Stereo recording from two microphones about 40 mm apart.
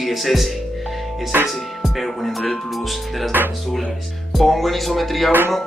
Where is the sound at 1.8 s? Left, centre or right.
Centre.